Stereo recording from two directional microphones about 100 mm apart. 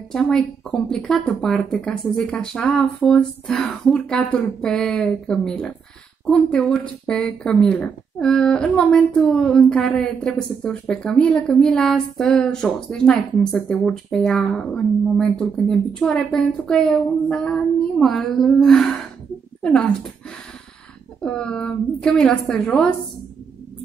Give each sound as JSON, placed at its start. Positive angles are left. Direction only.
{"t": 0.1, "sound": "a woman's voice", "side_deg": 5}
{"t": 21.2, "sound": "a woman's voice", "side_deg": 10}